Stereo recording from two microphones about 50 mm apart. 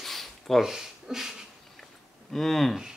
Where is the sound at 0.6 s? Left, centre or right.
Centre.